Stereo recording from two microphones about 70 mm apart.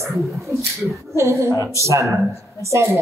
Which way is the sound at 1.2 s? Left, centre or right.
Right.